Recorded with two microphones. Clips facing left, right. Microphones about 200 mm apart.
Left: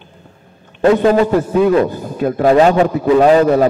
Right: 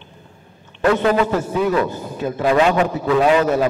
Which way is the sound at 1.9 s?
45° left (ahead or behind).